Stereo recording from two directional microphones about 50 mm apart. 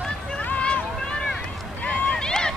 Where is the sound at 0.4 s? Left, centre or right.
Left.